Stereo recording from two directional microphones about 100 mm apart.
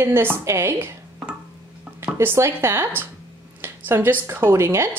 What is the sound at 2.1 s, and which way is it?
Speech, 25° right (ahead or behind).